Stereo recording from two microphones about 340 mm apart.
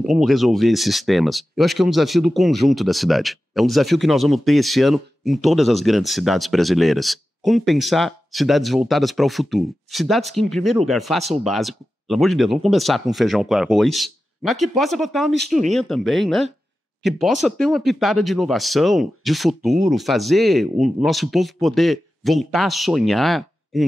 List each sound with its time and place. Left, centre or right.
0.0 s speech: centre